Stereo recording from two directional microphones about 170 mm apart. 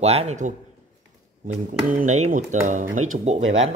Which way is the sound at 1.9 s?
45° right (ahead or behind).